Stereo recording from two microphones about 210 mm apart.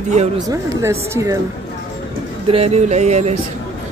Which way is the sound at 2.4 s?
30° right (ahead or behind).